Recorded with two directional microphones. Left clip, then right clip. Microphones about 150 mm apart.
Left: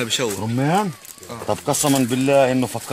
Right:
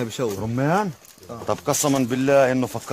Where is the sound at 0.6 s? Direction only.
20° left (ahead or behind).